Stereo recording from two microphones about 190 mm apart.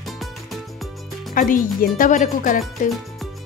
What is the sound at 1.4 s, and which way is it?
Speech, 45° left (ahead or behind).